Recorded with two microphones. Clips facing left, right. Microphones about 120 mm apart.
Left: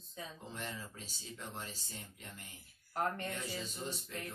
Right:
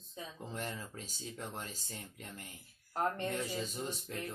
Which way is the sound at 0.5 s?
45° right (ahead or behind).